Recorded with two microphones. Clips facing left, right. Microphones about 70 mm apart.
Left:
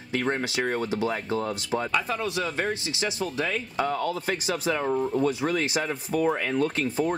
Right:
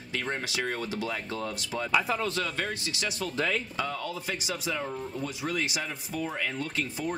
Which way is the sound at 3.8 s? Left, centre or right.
Left.